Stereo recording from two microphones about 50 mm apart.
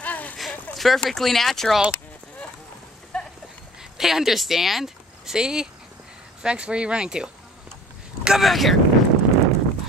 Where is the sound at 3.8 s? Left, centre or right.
Centre.